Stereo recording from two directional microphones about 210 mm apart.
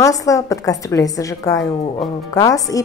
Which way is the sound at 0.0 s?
15° left (ahead or behind).